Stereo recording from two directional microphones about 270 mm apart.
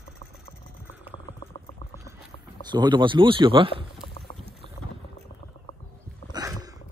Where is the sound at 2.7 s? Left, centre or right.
Centre.